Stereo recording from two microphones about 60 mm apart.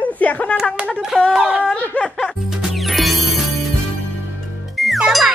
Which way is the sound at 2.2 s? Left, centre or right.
Centre.